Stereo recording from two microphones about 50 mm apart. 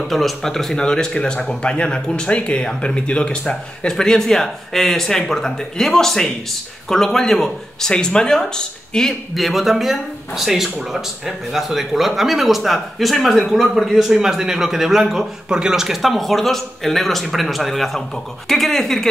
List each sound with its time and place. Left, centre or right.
0.0 s speech: centre
9.3 s a man's voice: centre